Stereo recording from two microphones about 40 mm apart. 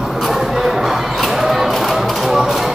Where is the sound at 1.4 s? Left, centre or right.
Centre.